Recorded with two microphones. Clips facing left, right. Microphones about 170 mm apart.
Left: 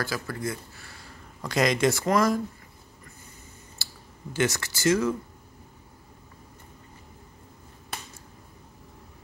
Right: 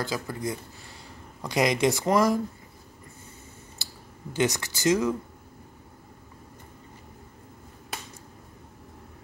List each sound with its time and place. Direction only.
0.0 s speech: 20° right (ahead or behind)
3.7 s speech: 15° right (ahead or behind)